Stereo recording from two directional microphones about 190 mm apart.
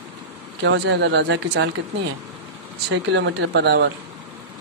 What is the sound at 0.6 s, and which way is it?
Speech, 70° right (ahead or behind).